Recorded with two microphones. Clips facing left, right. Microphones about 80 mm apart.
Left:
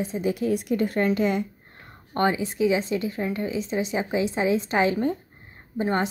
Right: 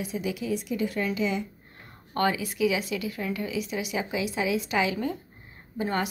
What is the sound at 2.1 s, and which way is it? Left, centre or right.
A woman's voice, left.